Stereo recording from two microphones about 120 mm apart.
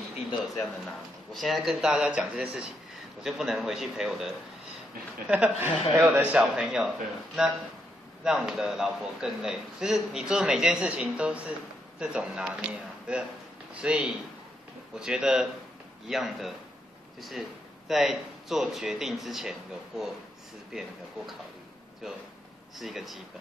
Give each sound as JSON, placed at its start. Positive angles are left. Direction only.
{"t": 1.3, "sound": "speech", "side_deg": 0}
{"t": 22.8, "sound": "speech", "side_deg": 0}